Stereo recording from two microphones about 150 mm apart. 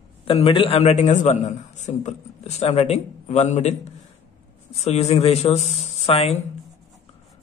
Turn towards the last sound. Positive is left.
turn(degrees=45)  # may be behind; listen again after turning